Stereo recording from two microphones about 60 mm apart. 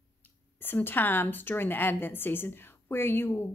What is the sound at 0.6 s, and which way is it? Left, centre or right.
A woman's voice, left.